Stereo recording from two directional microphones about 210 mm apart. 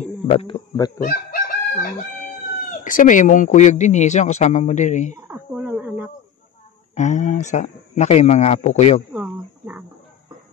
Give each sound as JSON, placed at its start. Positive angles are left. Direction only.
{"t": 0.0, "sound": "a sound", "side_deg": 30}
{"t": 1.0, "sound": "chicken", "side_deg": 45}
{"t": 2.8, "sound": "speech", "side_deg": 40}
{"t": 5.3, "sound": "a sound", "side_deg": -5}
{"t": 7.0, "sound": "speech", "side_deg": 35}
{"t": 9.1, "sound": "speech", "side_deg": -10}